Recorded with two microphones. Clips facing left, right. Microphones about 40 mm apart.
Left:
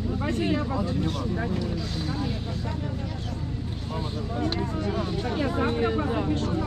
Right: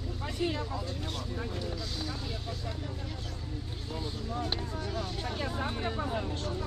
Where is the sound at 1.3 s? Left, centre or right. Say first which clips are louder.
Left 9 dB; left.